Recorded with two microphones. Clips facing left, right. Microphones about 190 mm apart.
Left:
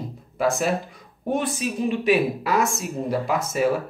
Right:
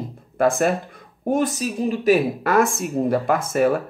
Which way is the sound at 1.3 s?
40° right (ahead or behind).